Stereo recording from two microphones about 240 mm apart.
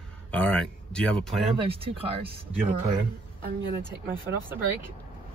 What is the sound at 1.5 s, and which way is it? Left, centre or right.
Speech, right.